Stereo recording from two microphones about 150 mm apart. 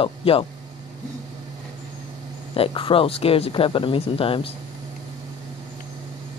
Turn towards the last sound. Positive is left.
turn(degrees=35)  # may be behind; listen again after turning